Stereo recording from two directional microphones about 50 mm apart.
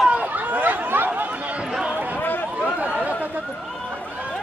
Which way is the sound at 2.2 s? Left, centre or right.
Left.